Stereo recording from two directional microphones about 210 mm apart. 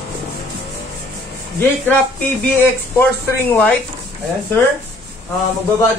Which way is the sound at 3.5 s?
5° left (ahead or behind).